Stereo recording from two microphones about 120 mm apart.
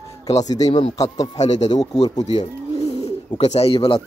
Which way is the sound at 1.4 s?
70° left (ahead or behind).